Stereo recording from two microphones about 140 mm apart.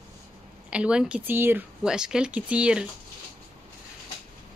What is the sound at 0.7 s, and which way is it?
Speech, 10° right (ahead or behind).